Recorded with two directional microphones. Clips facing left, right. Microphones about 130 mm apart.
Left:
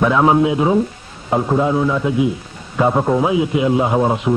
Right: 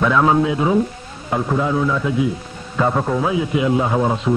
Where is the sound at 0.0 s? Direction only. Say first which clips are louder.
Left 2 dB; 20° left (ahead or behind).